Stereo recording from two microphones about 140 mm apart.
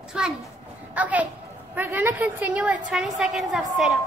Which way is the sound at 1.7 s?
15° right (ahead or behind).